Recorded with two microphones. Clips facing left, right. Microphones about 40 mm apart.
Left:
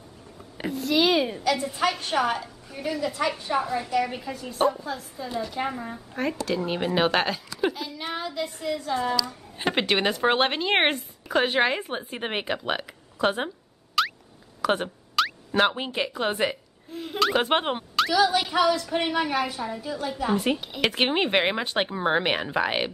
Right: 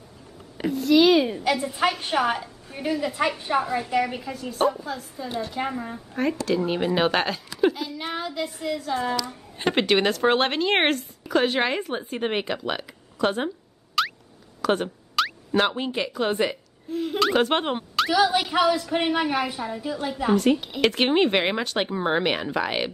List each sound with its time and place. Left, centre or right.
0.7 s a woman's voice: centre
4.0 s a woman's voice: centre
14.0 s a sound: centre
16.2 s a woman's voice: centre
20.3 s speech: centre
20.6 s a woman's voice: centre